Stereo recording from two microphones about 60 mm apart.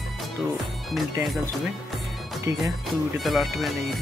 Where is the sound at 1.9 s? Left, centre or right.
Centre.